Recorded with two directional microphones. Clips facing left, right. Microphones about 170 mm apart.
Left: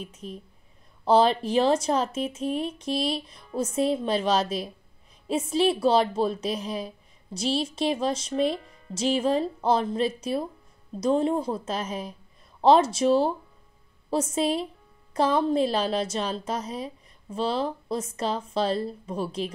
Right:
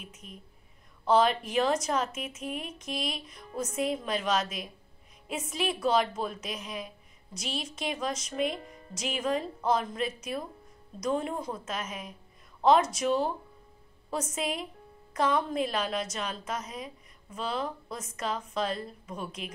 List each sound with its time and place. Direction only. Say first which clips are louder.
0.0 s a woman's voice: left 9 dB; 30° left (ahead or behind)